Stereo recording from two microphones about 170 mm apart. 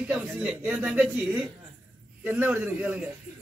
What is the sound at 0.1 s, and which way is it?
A man's voice, 5° right (ahead or behind).